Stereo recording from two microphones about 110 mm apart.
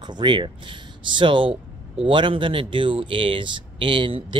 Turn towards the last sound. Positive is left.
turn(degrees=-50)  # may be behind; listen again after turning